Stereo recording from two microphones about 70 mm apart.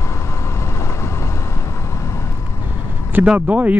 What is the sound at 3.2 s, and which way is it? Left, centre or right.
Speech, centre.